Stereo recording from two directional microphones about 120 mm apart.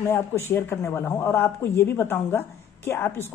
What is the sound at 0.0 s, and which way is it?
Speech, 20° left (ahead or behind).